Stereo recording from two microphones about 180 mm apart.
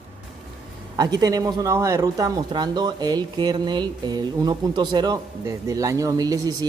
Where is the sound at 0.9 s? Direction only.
20° right (ahead or behind).